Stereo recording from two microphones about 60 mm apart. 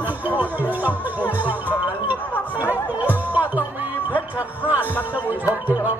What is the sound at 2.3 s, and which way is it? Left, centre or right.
Chatter, left.